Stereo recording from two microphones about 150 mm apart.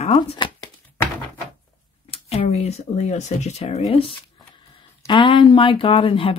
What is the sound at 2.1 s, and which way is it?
Speech, 40° left (ahead or behind).